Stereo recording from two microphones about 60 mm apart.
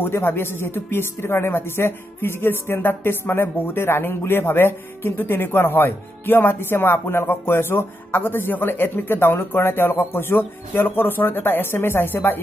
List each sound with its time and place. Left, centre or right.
0.0 s speech: left